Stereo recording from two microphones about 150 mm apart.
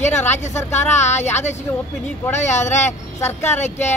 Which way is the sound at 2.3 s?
50° left (ahead or behind).